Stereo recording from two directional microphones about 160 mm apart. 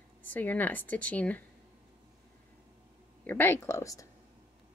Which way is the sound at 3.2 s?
15° left (ahead or behind).